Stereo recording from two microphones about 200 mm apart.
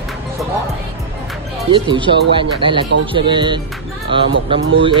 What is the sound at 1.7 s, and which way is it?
Speech, 25° right (ahead or behind).